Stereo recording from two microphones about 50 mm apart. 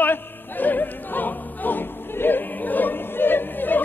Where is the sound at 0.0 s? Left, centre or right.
Left.